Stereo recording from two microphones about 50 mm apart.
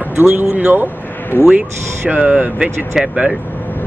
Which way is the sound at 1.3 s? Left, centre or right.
Left.